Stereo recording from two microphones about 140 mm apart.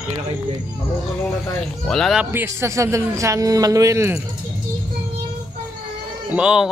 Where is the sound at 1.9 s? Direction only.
Centre (ahead or behind).